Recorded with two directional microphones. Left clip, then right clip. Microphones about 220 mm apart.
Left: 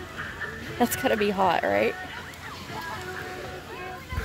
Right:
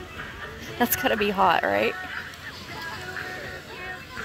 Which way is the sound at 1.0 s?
Centre (ahead or behind).